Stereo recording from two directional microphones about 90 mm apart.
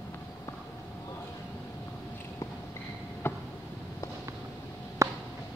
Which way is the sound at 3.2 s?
25° left (ahead or behind).